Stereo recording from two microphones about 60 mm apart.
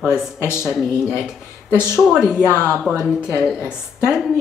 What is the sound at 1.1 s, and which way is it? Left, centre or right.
Speech, centre.